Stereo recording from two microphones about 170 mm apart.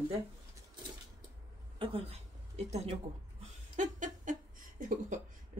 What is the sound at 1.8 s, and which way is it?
A woman's voice, 35° right (ahead or behind).